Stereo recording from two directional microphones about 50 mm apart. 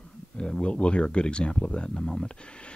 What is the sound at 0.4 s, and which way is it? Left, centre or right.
Speech, centre.